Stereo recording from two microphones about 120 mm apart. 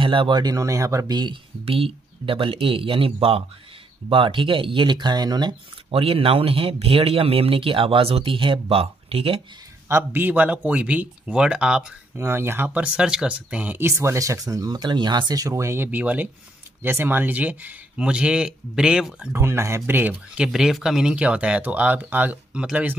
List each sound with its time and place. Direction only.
0.0 s speech: 45° right (ahead or behind)
1.6 s speech: 50° right (ahead or behind)
9.8 s speech: 20° right (ahead or behind)
12.2 s speech: 20° right (ahead or behind)
19.3 s speech: 20° right (ahead or behind)
20.4 s speech: 5° right (ahead or behind)